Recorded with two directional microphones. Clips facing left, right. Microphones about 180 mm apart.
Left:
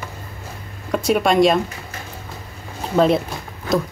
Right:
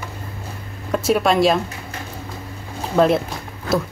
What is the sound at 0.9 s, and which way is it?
Speech, centre (ahead or behind).